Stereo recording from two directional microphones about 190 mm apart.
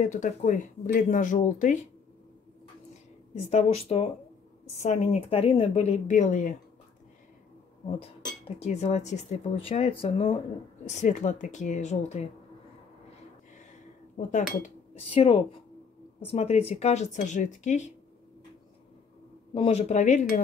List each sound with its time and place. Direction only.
0.0 s speech: 40° left (ahead or behind)
3.3 s speech: 30° left (ahead or behind)
8.5 s speech: 35° left (ahead or behind)
14.1 s speech: 40° left (ahead or behind)
15.1 s speech: 30° left (ahead or behind)
19.5 s speech: 30° left (ahead or behind)